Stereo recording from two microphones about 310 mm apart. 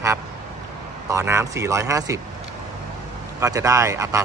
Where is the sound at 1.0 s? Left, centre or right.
Centre.